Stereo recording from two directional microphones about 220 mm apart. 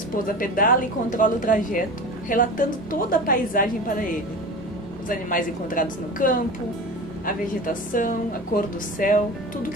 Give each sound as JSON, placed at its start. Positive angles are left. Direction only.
{"t": 0.1, "sound": "speech", "side_deg": 40}